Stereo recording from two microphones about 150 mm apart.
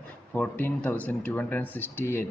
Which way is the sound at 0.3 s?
10° left (ahead or behind).